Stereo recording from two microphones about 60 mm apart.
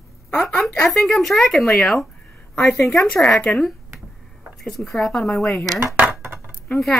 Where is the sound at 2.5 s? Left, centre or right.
Centre.